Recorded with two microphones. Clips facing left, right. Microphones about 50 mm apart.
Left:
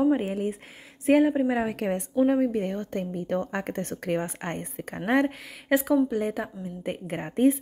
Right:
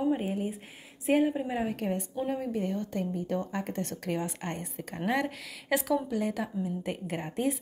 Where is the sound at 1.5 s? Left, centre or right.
Left.